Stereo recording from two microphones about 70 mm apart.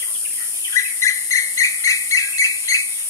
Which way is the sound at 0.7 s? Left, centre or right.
Left.